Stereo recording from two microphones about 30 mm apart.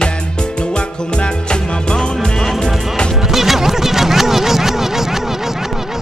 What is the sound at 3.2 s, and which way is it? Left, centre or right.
Music, centre.